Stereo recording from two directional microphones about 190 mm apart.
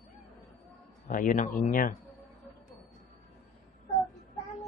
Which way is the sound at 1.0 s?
45° left (ahead or behind).